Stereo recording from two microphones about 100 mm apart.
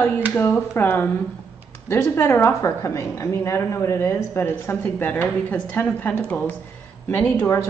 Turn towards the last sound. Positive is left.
turn(degrees=20)  # may be behind; listen again after turning